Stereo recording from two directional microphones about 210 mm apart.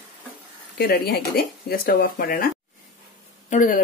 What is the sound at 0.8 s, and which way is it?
Speech, 50° left (ahead or behind).